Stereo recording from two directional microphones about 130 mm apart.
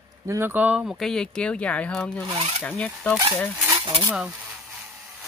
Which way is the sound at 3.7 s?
40° right (ahead or behind).